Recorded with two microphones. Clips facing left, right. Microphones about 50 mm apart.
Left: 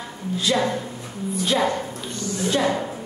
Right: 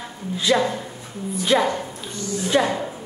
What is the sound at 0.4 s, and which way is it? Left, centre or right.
A woman's voice, right.